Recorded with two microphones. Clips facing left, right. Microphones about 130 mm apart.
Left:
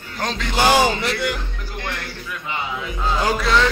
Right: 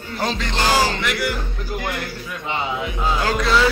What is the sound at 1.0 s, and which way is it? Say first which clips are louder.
Speech: even; 25° left (ahead or behind).